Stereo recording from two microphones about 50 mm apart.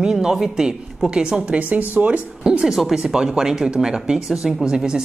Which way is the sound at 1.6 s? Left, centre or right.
Right.